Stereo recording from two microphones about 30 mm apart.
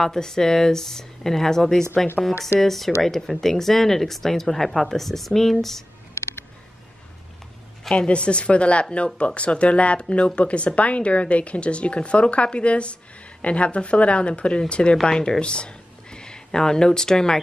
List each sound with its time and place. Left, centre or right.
0.0 s speech: centre
2.2 s speech: centre
8.1 s speech: left